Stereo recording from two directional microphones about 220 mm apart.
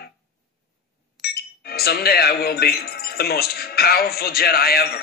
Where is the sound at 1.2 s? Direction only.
45° left (ahead or behind).